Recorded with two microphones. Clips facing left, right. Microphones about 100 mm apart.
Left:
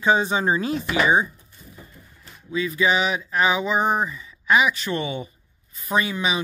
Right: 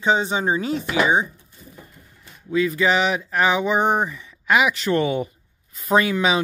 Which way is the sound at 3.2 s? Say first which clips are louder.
Right 2 dB; 45° right (ahead or behind).